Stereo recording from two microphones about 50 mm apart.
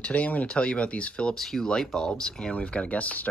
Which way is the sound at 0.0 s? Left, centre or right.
Left.